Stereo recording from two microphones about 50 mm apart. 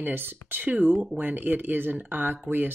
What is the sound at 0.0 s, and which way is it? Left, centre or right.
Speech, right.